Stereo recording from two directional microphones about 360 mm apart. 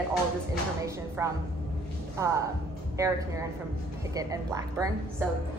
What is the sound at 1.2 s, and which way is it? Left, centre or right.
Speech, centre.